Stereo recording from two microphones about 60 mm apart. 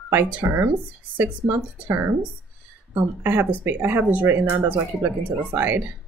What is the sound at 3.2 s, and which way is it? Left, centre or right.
Speech, right.